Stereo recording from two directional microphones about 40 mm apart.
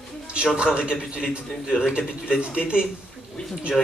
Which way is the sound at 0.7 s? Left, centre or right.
Right.